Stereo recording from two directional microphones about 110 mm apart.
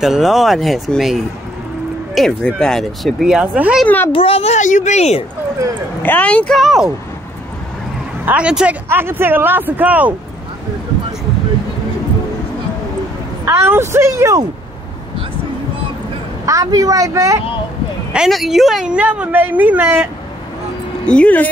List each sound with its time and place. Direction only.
0.0 s speech: 5° right (ahead or behind)
3.8 s speech: 15° left (ahead or behind)
4.1 s speech: 60° left (ahead or behind); by 5.2 s 85° left
6.0 s speech: 15° left (ahead or behind)
8.3 s a woman's voice: 10° right (ahead or behind)
8.8 s a woman's voice: 20° right (ahead or behind)
13.7 s a woman's voice: 20° right (ahead or behind)
16.4 s speech: 30° right (ahead or behind)
18.1 s a woman's voice: 5° right (ahead or behind)
21.0 s speech: 10° left (ahead or behind)